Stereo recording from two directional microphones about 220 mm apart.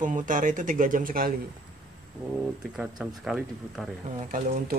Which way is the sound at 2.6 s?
Centre (ahead or behind).